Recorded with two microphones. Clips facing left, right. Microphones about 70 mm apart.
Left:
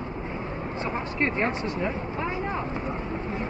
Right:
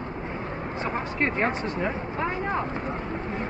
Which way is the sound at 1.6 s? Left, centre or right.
Right.